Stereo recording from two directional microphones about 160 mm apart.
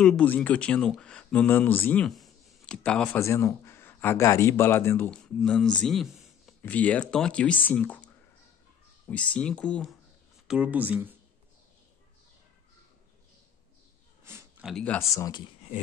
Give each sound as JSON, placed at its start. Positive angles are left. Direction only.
{"t": 0.0, "sound": "speech", "side_deg": 5}
{"t": 10.5, "sound": "speech", "side_deg": -10}
{"t": 14.2, "sound": "a sound", "side_deg": -15}
{"t": 14.6, "sound": "speech", "side_deg": 0}
{"t": 15.0, "sound": "speech", "side_deg": 20}